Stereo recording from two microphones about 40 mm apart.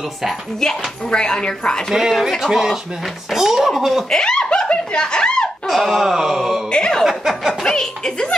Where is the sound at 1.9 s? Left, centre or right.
Centre.